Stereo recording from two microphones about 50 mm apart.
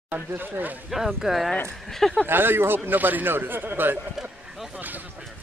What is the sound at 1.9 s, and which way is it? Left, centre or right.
Speech, centre.